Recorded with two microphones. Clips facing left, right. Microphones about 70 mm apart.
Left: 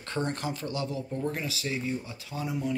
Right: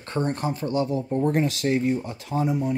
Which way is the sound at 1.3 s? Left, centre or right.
Right.